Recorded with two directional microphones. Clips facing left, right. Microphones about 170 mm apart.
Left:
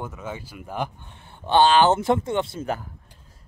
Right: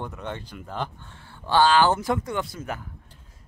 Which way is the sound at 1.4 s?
20° left (ahead or behind).